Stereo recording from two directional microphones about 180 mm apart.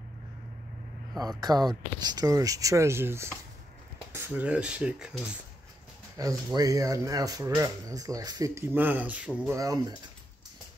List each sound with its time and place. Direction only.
1.4 s speech: 20° right (ahead or behind); by 5.3 s 5° right (ahead or behind)
6.1 s speech: 20° right (ahead or behind)
9.6 s speech: 20° right (ahead or behind)